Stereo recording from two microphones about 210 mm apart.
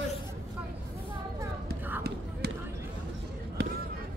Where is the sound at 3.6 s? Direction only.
50° right (ahead or behind).